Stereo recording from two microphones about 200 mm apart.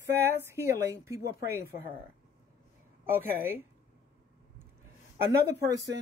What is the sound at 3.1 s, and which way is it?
Speech, 10° right (ahead or behind).